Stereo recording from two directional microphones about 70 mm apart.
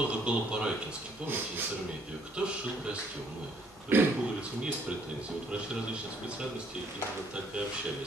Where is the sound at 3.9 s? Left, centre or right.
Right.